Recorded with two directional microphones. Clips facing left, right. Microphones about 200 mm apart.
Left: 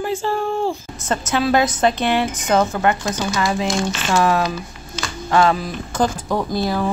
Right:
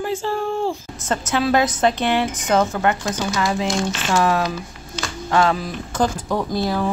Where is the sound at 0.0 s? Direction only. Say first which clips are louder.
Left 1 dB; 5° left (ahead or behind).